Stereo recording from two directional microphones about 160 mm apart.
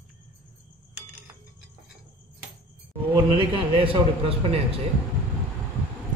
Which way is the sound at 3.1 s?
30° right (ahead or behind).